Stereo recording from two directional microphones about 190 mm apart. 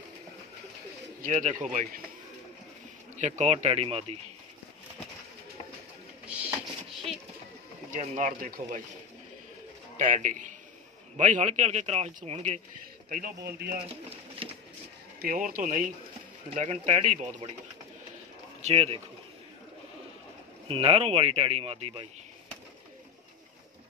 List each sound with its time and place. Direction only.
1.2 s a man's voice: 40° right (ahead or behind)
3.2 s a man's voice: 35° right (ahead or behind)
6.2 s a sound: 5° right (ahead or behind)
7.9 s a man's voice: 40° right (ahead or behind)
9.9 s a man's voice: 40° right (ahead or behind)
13.1 s speech: 55° right (ahead or behind)
14.4 s a sound: 30° right (ahead or behind)
15.1 s a man's voice: 45° right (ahead or behind)
18.6 s speech: 30° right (ahead or behind)
20.6 s a man's voice: 30° right (ahead or behind)